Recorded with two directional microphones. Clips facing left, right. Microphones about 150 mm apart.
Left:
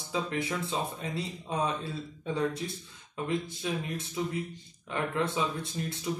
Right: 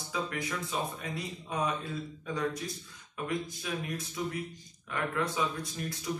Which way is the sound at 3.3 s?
25° left (ahead or behind).